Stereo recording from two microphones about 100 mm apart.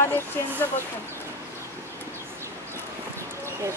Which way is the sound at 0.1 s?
20° left (ahead or behind).